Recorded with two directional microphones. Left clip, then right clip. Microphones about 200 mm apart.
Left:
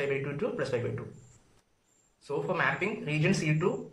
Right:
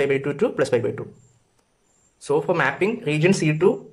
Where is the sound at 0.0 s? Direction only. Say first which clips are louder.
Right 10 dB; 45° right (ahead or behind).